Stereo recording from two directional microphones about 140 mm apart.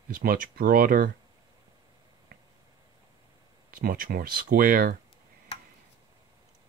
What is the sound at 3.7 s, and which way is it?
Speech, 90° right.